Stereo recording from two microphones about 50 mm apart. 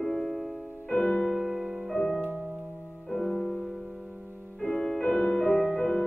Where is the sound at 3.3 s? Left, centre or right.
Centre.